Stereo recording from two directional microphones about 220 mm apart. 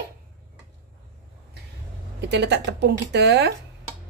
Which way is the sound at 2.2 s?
50° right (ahead or behind).